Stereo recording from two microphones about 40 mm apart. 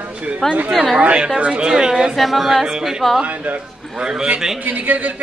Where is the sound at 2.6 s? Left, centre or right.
Centre.